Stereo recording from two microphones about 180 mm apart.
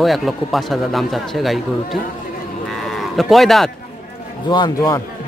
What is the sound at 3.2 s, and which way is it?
Speech, centre (ahead or behind).